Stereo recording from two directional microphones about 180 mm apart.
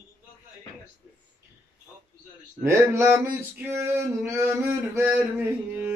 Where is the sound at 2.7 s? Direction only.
15° right (ahead or behind).